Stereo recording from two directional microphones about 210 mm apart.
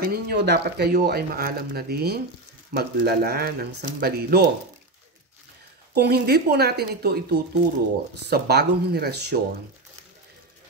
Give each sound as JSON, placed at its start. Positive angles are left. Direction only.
{"t": 0.0, "sound": "speech", "side_deg": -50}
{"t": 5.9, "sound": "speech", "side_deg": -50}